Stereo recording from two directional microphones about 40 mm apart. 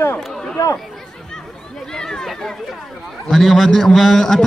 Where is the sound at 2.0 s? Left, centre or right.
Centre.